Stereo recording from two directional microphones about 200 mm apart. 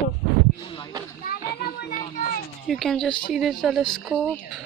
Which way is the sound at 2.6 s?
Centre (ahead or behind).